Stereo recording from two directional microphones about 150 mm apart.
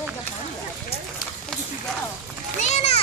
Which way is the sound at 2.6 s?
45° left (ahead or behind).